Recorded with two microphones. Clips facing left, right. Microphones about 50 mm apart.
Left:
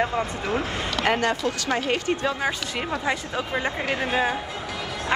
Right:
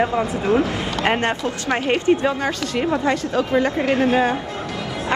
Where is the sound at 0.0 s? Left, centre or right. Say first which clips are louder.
Right 5 dB; centre.